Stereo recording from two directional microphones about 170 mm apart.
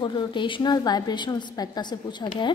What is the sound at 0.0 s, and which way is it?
A woman's voice, 30° left (ahead or behind).